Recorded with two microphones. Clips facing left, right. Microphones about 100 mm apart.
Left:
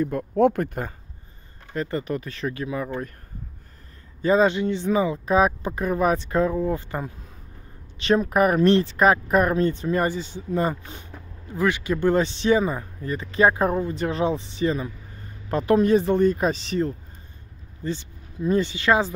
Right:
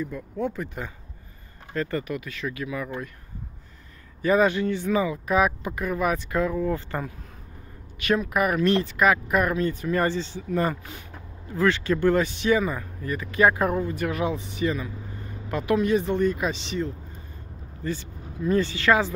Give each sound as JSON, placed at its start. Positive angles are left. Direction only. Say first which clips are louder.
{"t": 0.0, "sound": "speech", "louder": "left 9 dB", "side_deg": 65}
{"t": 1.7, "sound": "speech", "louder": "left 1 dB", "side_deg": 20}
{"t": 4.2, "sound": "speech", "louder": "left 2 dB", "side_deg": 25}
{"t": 8.0, "sound": "speech", "louder": "left 4 dB", "side_deg": 30}
{"t": 10.0, "sound": "speech", "louder": "even", "side_deg": 15}
{"t": 17.8, "sound": "speech", "louder": "left 1 dB", "side_deg": 20}